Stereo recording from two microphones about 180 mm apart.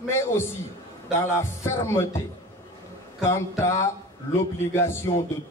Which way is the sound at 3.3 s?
15° left (ahead or behind).